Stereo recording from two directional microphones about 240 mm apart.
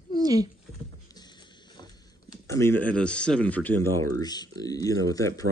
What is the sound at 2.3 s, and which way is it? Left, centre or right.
Speech, centre.